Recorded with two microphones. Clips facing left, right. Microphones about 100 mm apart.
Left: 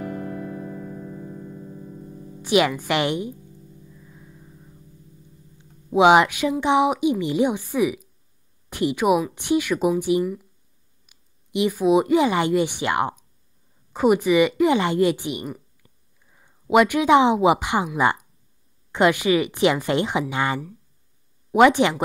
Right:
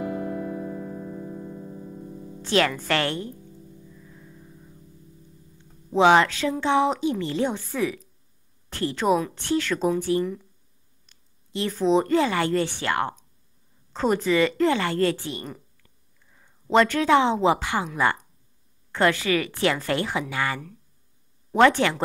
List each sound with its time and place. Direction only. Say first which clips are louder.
0.0 s music: right 2 dB; 15° right (ahead or behind)
2.4 s speech: left 3 dB; 15° left (ahead or behind)
3.8 s music: even; 10° left (ahead or behind)
5.6 s a woman's voice: left 3 dB; 15° left (ahead or behind)